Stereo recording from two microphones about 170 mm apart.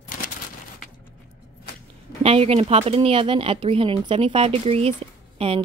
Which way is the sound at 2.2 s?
35° right (ahead or behind).